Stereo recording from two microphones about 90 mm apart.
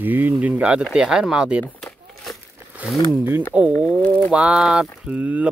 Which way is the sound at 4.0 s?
15° left (ahead or behind).